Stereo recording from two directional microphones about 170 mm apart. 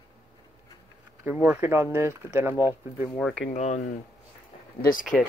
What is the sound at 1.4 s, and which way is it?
Speech, 10° right (ahead or behind).